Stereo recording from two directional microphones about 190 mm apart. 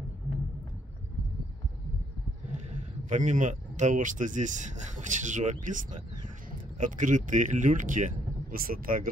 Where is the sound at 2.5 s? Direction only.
40° right (ahead or behind).